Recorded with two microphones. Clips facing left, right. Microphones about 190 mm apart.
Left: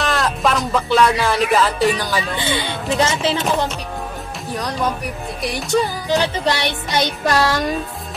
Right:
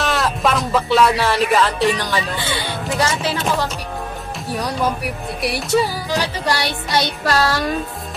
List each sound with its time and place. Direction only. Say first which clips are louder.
0.0 s music: even; centre (ahead or behind)
3.0 s music: left 2 dB; 20° left (ahead or behind)
4.6 s music: right 1 dB; 5° right (ahead or behind)
6.0 s music: left 3 dB; 20° left (ahead or behind)